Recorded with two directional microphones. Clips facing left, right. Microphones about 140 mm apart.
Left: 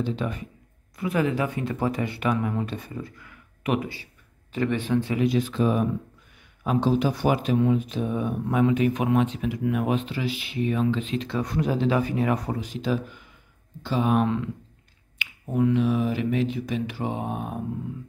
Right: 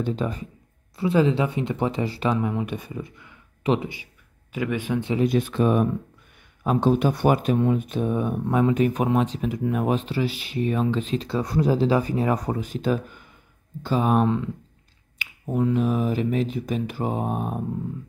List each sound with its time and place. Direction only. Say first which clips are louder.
0.0 s speech: right 2 dB; 40° right (ahead or behind); by 5.1 s 15° right (ahead or behind)
5.2 s speech: right 2 dB; 55° right (ahead or behind)
6.6 s speech: right 2 dB; 45° right (ahead or behind)
12.5 s speech: right 2 dB; 50° right (ahead or behind)